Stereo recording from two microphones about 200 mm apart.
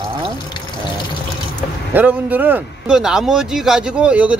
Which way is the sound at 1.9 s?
10° right (ahead or behind).